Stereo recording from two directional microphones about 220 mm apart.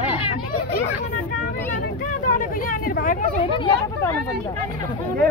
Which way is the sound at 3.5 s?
20° left (ahead or behind).